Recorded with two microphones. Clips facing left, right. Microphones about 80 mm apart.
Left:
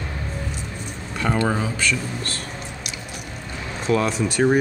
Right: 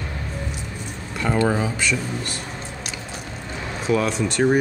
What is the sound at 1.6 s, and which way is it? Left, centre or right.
Speech, centre.